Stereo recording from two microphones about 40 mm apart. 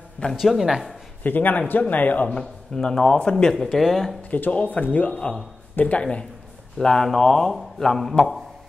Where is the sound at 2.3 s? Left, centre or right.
Centre.